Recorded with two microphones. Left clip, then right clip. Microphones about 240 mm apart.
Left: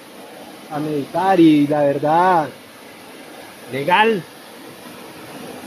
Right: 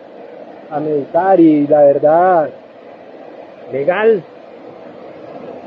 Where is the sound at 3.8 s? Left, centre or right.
Left.